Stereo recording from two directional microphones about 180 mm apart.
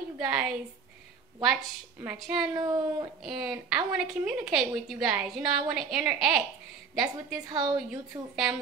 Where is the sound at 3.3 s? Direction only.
Centre (ahead or behind).